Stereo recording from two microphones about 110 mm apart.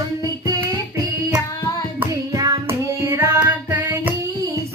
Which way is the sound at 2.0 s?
30° right (ahead or behind).